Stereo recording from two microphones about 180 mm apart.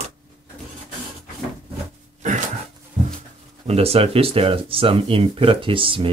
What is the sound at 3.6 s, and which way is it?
Speech, 35° right (ahead or behind).